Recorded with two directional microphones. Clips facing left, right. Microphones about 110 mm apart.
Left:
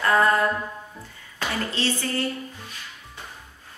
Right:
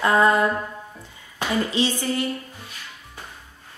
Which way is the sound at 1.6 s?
15° right (ahead or behind).